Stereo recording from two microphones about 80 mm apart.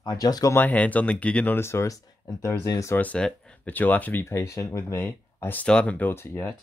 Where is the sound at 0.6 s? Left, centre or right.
Centre.